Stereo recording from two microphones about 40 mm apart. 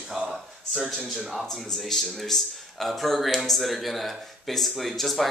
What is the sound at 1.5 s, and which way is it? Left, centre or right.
A man's voice, centre.